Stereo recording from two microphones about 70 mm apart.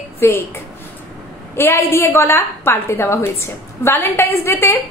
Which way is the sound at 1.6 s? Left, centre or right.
Left.